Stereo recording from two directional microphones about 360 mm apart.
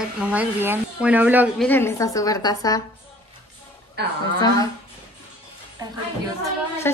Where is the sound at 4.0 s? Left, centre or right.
Right.